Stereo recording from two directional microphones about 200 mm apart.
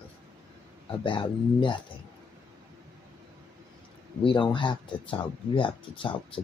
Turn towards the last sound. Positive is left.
turn(degrees=25)  # may be behind; listen again after turning